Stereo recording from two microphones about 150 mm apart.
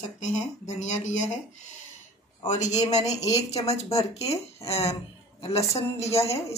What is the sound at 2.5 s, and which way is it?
Speech, 50° left (ahead or behind).